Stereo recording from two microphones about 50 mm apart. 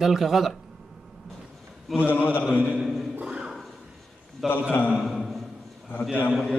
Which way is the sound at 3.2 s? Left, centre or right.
Centre.